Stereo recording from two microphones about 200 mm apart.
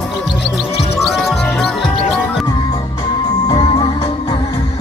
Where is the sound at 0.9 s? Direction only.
Centre (ahead or behind).